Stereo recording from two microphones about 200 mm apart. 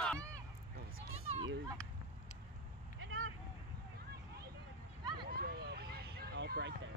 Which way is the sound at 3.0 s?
90° right.